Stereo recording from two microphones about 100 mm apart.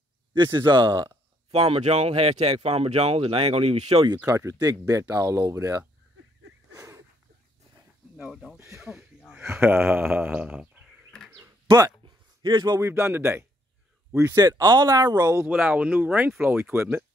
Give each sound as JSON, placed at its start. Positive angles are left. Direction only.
{"t": 0.3, "sound": "a man's voice", "side_deg": -50}
{"t": 1.5, "sound": "speech", "side_deg": -85}
{"t": 4.3, "sound": "speech", "side_deg": -35}
{"t": 6.7, "sound": "a sound", "side_deg": -30}
{"t": 8.2, "sound": "speech", "side_deg": 0}
{"t": 8.5, "sound": "speech", "side_deg": -30}
{"t": 8.8, "sound": "a sound", "side_deg": -5}
{"t": 9.4, "sound": "speech", "side_deg": -25}
{"t": 10.3, "sound": "speech", "side_deg": -10}
{"t": 12.0, "sound": "a sound", "side_deg": -55}
{"t": 12.4, "sound": "a man's voice", "side_deg": -45}
{"t": 12.8, "sound": "speech", "side_deg": -25}
{"t": 14.3, "sound": "speech", "side_deg": -40}
{"t": 15.3, "sound": "speech", "side_deg": -15}